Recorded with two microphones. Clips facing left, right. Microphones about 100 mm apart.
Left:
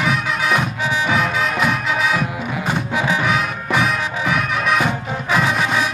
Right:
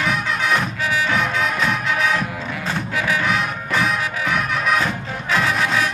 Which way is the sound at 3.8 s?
Centre (ahead or behind).